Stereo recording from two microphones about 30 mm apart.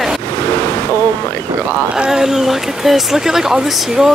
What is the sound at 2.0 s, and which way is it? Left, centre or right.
Speech, centre.